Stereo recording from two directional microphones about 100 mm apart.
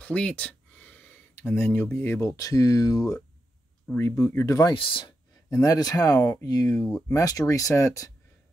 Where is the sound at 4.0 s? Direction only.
25° left (ahead or behind).